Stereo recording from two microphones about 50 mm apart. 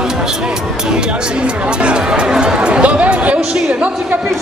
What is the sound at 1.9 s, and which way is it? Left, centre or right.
Chatter, centre.